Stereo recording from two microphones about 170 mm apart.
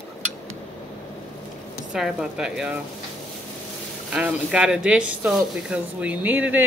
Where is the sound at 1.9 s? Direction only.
5° right (ahead or behind).